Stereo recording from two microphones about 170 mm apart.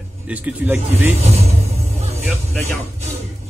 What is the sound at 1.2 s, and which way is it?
Music, 40° right (ahead or behind).